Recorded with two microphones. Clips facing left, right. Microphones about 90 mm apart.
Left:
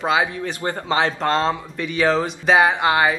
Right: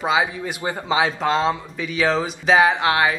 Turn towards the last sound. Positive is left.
turn(degrees=0)  # may be behind; listen again after turning